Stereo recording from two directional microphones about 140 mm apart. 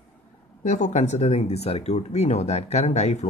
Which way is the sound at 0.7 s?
60° left (ahead or behind).